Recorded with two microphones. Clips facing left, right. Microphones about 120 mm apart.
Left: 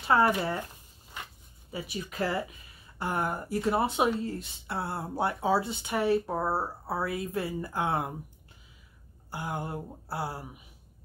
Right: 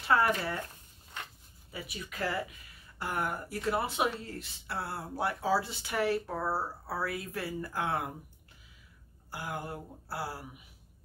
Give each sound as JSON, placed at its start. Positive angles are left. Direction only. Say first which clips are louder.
{"t": 0.1, "sound": "speech", "louder": "left 4 dB", "side_deg": 25}
{"t": 1.7, "sound": "speech", "louder": "left 6 dB", "side_deg": 30}
{"t": 9.3, "sound": "speech", "louder": "left 4 dB", "side_deg": 25}